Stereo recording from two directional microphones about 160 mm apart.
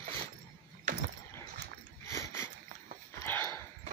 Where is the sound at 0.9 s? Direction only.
50° right (ahead or behind).